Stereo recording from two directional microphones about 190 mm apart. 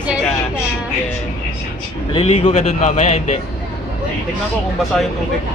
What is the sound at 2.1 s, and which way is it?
A man's voice, 30° left (ahead or behind).